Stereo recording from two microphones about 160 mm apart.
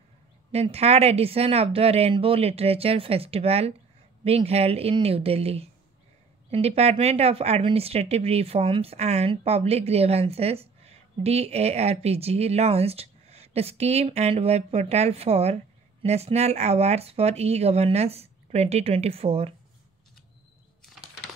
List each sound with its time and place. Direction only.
0.5 s speech: 40° right (ahead or behind)